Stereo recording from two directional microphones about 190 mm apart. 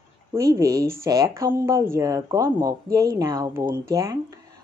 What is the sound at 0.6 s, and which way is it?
Speech, 15° right (ahead or behind).